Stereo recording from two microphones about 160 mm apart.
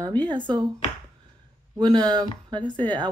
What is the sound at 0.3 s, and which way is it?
Speech, 30° right (ahead or behind).